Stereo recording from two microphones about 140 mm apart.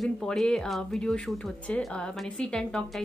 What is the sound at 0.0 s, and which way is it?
A woman's voice, 5° left (ahead or behind).